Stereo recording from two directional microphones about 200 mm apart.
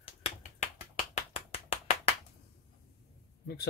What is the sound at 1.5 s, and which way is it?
Clapping, 30° left (ahead or behind).